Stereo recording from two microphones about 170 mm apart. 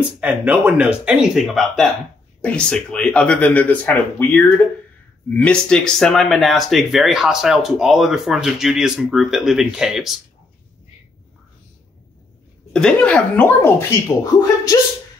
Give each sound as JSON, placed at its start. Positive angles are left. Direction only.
{"t": 0.2, "sound": "speech", "side_deg": -10}
{"t": 12.7, "sound": "speech", "side_deg": 5}